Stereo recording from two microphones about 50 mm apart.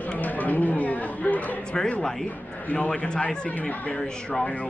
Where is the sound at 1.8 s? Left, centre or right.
Left.